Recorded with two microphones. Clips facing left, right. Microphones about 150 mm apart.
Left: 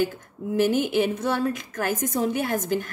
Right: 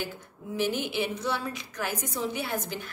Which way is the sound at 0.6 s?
45° left (ahead or behind).